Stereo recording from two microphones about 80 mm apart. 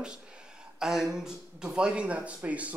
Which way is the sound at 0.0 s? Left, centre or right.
Centre.